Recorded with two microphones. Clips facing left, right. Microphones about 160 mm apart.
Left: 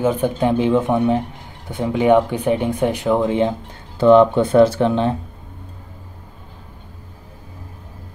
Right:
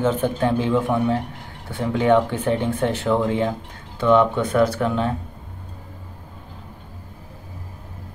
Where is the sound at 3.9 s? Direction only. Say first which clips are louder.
Left 6 dB; 30° left (ahead or behind).